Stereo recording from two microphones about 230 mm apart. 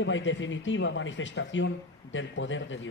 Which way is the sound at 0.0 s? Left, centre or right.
Left.